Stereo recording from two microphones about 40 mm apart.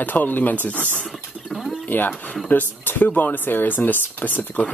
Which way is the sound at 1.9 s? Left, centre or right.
Left.